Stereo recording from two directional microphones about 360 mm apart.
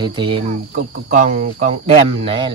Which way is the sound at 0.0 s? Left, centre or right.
Centre.